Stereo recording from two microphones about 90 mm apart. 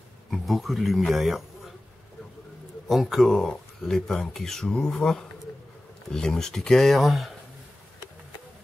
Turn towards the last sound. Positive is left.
turn(degrees=0)  # may be behind; listen again after turning